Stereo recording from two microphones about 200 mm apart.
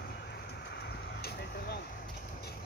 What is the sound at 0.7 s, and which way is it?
Vehicle, 55° left (ahead or behind).